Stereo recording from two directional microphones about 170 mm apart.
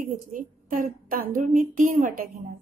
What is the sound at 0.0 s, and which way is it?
A woman's voice, 55° right (ahead or behind).